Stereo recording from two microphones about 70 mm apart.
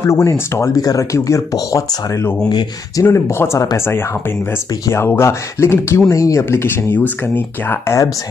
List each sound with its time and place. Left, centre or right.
0.0 s speech: left
3.0 s speech: left